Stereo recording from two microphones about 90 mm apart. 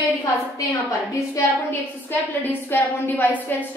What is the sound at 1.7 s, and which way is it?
A woman's voice, 25° left (ahead or behind).